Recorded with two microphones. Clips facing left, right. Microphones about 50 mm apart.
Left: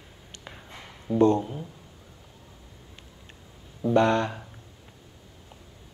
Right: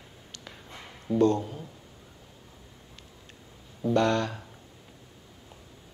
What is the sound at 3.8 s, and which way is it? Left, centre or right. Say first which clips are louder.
Speech: left 3 dB; centre.